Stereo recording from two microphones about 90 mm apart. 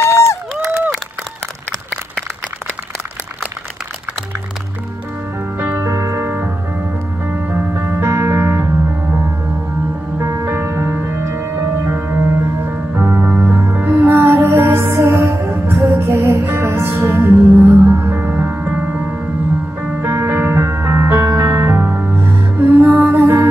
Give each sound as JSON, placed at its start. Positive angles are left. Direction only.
{"t": 0.0, "sound": "run", "side_deg": 30}
{"t": 5.6, "sound": "music", "side_deg": -25}